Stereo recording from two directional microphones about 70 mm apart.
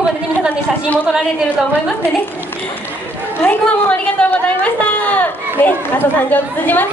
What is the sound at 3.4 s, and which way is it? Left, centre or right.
A woman's voice, left.